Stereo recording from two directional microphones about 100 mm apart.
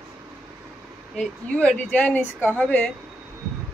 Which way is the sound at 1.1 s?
10° left (ahead or behind).